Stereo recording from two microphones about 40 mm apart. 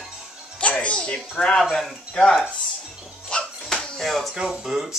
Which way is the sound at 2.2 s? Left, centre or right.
Left.